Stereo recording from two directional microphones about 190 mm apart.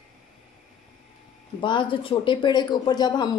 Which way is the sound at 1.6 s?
25° left (ahead or behind).